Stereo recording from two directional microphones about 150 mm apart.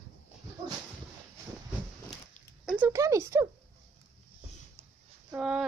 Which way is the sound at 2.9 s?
20° right (ahead or behind).